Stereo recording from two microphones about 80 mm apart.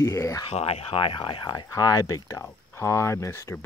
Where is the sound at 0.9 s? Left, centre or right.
Left.